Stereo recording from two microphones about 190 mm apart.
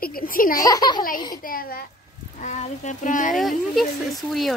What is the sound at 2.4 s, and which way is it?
Speech, 35° left (ahead or behind).